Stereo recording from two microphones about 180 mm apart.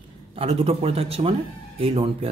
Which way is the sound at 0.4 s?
35° right (ahead or behind).